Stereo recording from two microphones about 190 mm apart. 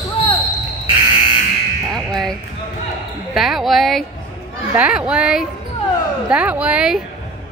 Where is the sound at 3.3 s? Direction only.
Centre (ahead or behind).